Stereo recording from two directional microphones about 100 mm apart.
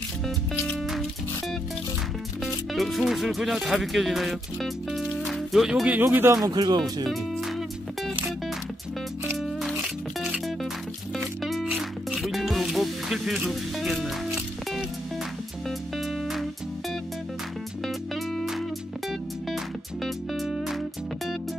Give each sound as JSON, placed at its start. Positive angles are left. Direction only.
{"t": 2.4, "sound": "speech", "side_deg": 0}
{"t": 5.9, "sound": "speech", "side_deg": -20}
{"t": 6.5, "sound": "speech", "side_deg": -45}
{"t": 7.1, "sound": "music", "side_deg": 0}
{"t": 11.4, "sound": "music", "side_deg": 0}
{"t": 16.0, "sound": "music", "side_deg": 0}
{"t": 17.8, "sound": "music", "side_deg": 0}